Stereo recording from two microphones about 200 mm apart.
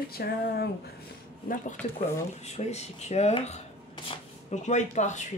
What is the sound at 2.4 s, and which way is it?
Speech, 35° left (ahead or behind).